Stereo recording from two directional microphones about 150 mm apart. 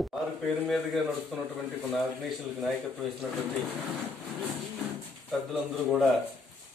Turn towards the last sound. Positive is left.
turn(degrees=0)  # may be behind; listen again after turning